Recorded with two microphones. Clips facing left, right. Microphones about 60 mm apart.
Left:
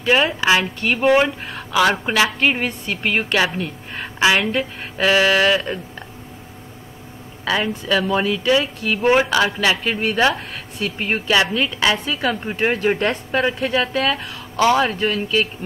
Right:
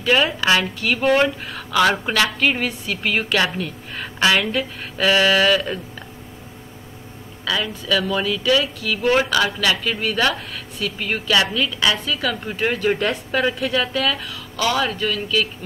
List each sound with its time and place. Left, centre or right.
0.0 s speech: centre
2.3 s speech: left
7.4 s speech: left